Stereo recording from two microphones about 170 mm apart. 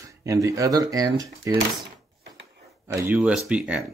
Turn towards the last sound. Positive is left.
turn(degrees=-5)  # may be behind; listen again after turning